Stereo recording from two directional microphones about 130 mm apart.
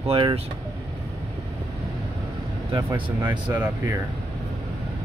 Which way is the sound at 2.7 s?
30° right (ahead or behind).